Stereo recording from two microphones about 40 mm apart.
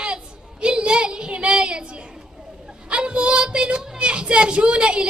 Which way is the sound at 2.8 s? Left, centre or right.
Right.